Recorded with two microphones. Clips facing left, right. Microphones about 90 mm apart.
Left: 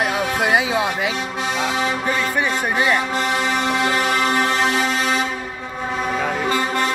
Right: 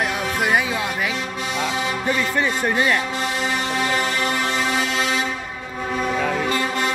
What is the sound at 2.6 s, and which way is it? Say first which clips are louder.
Speech: left 1 dB; 15° left (ahead or behind).